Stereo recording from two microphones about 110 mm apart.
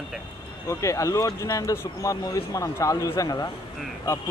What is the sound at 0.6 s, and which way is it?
Speech, 30° left (ahead or behind).